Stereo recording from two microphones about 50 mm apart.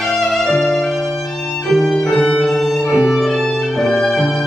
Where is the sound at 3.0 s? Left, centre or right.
Centre.